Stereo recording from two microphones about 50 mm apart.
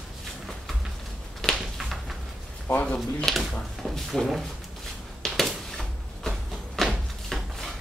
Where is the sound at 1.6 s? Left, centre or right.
Centre.